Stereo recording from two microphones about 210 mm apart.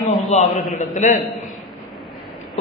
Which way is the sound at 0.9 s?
35° left (ahead or behind).